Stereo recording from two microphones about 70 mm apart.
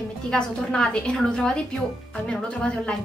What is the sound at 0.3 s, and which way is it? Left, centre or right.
Speech, centre.